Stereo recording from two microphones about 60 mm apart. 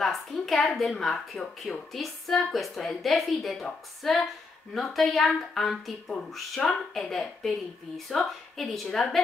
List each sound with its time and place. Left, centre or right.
0.0 s speech: centre